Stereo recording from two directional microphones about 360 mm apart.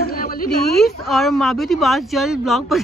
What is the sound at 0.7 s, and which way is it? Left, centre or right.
Speech, centre.